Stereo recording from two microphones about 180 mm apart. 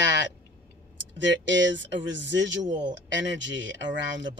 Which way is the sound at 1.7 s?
90° right.